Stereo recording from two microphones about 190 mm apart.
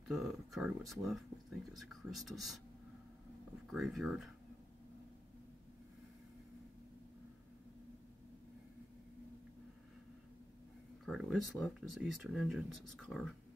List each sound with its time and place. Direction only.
0.1 s speech: centre (ahead or behind)
3.7 s speech: centre (ahead or behind)
11.1 s speech: centre (ahead or behind)